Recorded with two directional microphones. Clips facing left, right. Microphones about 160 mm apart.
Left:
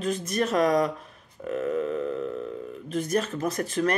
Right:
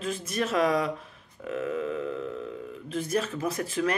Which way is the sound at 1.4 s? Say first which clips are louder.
Left 3 dB; 15° left (ahead or behind).